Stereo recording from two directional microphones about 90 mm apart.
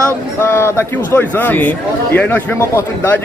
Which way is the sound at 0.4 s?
25° left (ahead or behind).